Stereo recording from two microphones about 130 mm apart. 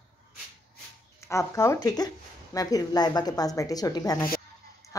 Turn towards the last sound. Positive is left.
turn(degrees=25)  # may be behind; listen again after turning